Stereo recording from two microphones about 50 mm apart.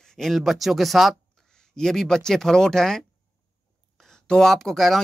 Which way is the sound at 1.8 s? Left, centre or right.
Centre.